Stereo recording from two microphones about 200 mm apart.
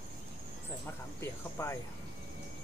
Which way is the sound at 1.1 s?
15° left (ahead or behind).